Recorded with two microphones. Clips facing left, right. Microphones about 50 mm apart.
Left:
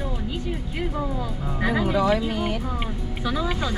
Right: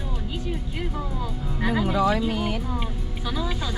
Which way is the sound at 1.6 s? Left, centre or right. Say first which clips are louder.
Left 1 dB; centre.